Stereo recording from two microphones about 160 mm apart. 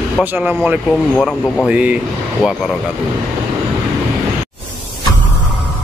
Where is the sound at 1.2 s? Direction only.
5° left (ahead or behind).